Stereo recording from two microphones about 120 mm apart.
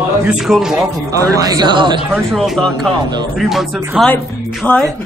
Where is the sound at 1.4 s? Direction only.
30° right (ahead or behind).